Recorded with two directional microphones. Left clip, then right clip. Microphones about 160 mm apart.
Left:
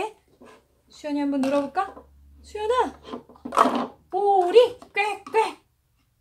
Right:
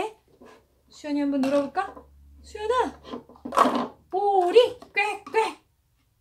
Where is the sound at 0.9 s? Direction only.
25° left (ahead or behind).